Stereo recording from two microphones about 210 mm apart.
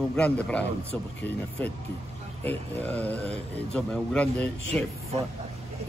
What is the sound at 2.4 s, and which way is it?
A man's voice, 10° left (ahead or behind).